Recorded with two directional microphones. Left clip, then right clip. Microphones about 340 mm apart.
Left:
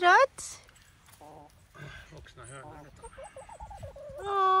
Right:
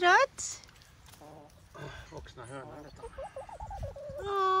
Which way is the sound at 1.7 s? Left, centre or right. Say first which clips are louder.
Right 3 dB; centre.